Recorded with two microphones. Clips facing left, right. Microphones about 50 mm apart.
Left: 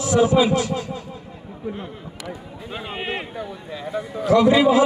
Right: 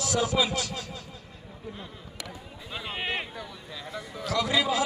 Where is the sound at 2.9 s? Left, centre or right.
Left.